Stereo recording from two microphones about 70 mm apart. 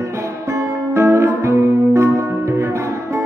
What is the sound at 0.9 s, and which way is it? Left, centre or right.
Music, right.